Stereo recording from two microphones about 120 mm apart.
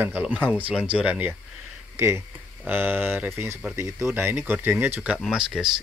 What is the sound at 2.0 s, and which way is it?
Speech, 20° right (ahead or behind).